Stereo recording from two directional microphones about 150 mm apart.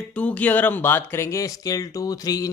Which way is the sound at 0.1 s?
10° left (ahead or behind).